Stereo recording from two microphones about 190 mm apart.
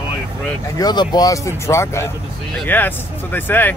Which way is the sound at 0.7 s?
20° left (ahead or behind).